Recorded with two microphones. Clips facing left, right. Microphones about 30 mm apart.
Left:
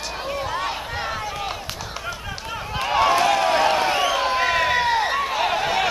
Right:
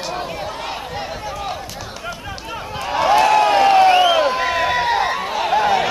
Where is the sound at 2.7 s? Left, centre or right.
Centre.